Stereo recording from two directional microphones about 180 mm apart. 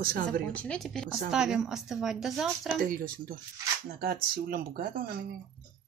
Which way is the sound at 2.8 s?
50° right (ahead or behind).